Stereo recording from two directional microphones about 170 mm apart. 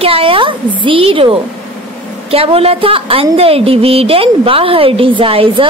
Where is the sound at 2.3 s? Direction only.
35° right (ahead or behind).